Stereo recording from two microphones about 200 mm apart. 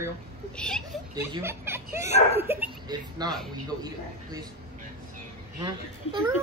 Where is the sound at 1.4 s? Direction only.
10° right (ahead or behind).